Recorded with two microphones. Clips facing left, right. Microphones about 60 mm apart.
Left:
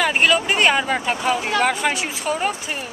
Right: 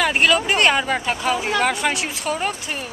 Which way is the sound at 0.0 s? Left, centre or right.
Centre.